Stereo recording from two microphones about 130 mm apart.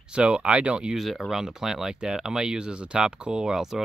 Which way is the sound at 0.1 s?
10° right (ahead or behind).